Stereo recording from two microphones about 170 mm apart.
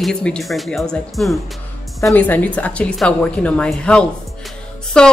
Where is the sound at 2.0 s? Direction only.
15° left (ahead or behind).